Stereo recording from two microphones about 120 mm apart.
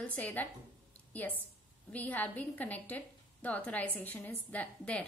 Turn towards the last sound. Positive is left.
turn(degrees=10)  # may be behind; listen again after turning